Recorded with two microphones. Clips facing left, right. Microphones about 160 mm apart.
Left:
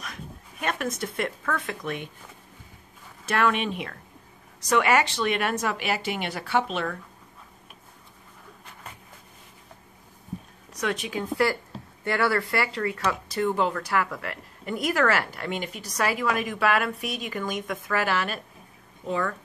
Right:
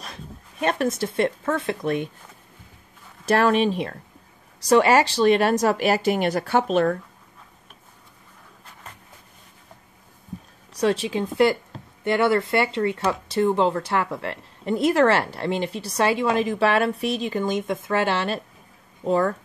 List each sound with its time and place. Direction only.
0.0 s speech: 30° right (ahead or behind)
3.3 s speech: 35° right (ahead or behind)
10.7 s speech: 30° right (ahead or behind)